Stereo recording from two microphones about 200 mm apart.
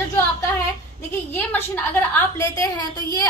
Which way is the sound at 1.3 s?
10° left (ahead or behind).